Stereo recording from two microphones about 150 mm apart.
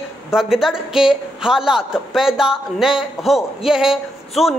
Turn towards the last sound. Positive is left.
turn(degrees=-5)  # may be behind; listen again after turning